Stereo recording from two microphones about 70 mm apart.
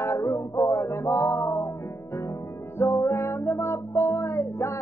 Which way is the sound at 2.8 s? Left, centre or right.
Left.